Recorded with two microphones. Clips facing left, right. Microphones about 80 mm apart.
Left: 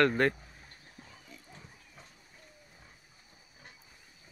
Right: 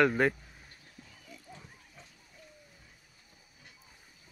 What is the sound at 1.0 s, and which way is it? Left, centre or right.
Horse, left.